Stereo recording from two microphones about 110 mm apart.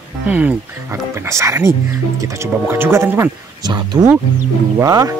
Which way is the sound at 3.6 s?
40° right (ahead or behind).